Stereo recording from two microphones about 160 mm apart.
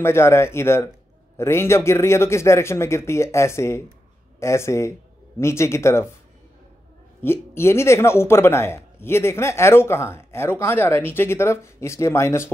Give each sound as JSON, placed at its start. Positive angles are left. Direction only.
{"t": 0.0, "sound": "a man's voice", "side_deg": 15}
{"t": 7.2, "sound": "a man's voice", "side_deg": 15}